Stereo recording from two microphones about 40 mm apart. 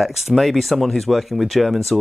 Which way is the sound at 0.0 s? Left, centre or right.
Centre.